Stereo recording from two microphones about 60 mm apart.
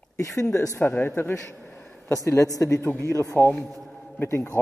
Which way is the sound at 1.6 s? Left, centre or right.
Left.